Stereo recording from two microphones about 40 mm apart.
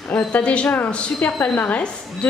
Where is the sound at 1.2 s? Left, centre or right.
Left.